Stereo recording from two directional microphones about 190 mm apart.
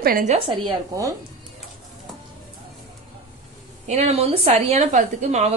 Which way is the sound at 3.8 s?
35° right (ahead or behind).